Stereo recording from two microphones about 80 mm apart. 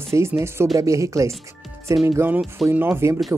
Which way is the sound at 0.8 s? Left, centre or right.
Right.